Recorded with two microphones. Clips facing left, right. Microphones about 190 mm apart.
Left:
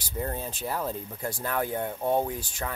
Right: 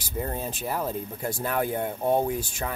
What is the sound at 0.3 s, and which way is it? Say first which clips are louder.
Speech: right 2 dB; 10° right (ahead or behind).